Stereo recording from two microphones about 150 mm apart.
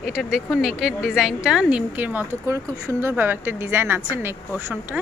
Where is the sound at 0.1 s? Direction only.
5° right (ahead or behind).